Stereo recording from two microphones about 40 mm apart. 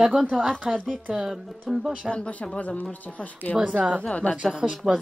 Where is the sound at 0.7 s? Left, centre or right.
Centre.